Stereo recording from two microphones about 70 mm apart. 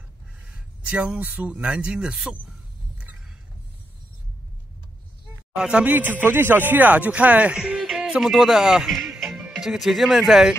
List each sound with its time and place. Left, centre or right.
0.5 s speech: centre
5.6 s a man's voice: centre
5.9 s speech: right; by 10.5 s centre